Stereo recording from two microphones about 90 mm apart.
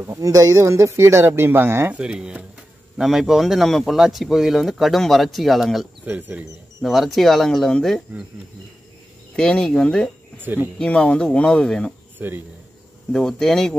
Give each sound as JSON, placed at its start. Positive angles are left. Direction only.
{"t": 0.0, "sound": "speech", "side_deg": -35}
{"t": 2.0, "sound": "speech", "side_deg": -10}
{"t": 6.0, "sound": "speech", "side_deg": -20}
{"t": 6.8, "sound": "speech", "side_deg": 0}
{"t": 9.3, "sound": "speech", "side_deg": 10}
{"t": 10.4, "sound": "speech", "side_deg": -20}
{"t": 10.8, "sound": "speech", "side_deg": 10}
{"t": 12.2, "sound": "speech", "side_deg": -25}
{"t": 13.1, "sound": "speech", "side_deg": 5}